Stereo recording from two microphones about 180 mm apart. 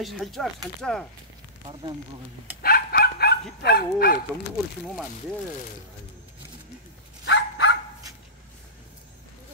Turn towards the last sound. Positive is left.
turn(degrees=75)  # may be behind; listen again after turning